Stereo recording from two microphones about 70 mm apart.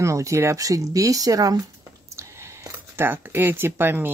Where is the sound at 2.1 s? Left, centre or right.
Right.